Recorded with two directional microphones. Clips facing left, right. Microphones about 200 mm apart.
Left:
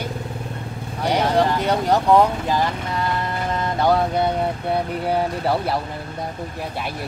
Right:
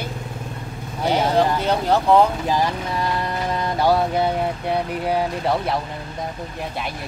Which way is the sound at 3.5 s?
10° right (ahead or behind).